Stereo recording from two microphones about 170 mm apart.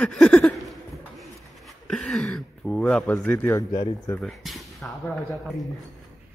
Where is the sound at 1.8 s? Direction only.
Centre (ahead or behind).